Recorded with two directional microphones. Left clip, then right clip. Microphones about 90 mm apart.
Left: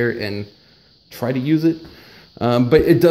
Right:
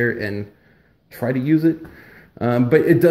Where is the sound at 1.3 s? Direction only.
30° left (ahead or behind).